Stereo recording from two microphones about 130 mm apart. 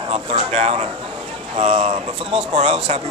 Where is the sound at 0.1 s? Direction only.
55° right (ahead or behind).